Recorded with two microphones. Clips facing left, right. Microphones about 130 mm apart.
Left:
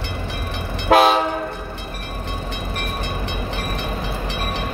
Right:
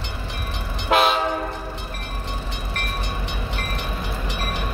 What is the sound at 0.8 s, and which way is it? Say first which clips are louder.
Train: left 5 dB; 35° left (ahead or behind).